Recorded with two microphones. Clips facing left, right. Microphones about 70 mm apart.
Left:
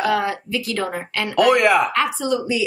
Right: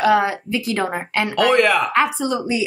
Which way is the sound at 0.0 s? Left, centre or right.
Right.